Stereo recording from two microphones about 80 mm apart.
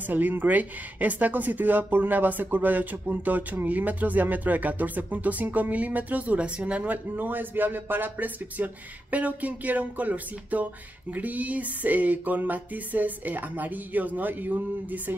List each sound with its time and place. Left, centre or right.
0.0 s speech: right